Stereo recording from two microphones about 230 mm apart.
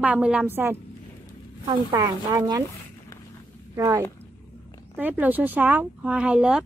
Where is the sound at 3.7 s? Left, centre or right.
Centre.